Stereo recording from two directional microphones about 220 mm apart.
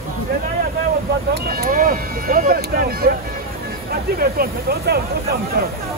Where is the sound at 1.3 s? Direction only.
40° right (ahead or behind).